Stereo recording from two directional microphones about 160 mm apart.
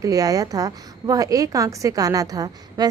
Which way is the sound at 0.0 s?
20° right (ahead or behind).